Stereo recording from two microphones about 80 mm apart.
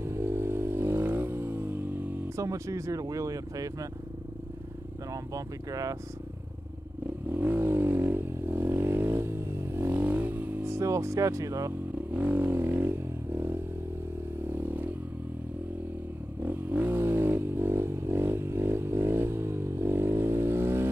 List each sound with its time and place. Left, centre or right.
0.0 s vehicle: right
2.3 s speech: right
5.1 s speech: right
7.2 s vehicle: right
10.0 s vehicle: right
10.6 s speech: right
12.1 s a sound: right
14.5 s vehicle: right
16.4 s vehicle: right